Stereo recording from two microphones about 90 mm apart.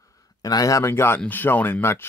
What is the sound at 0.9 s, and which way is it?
Speech, 25° left (ahead or behind).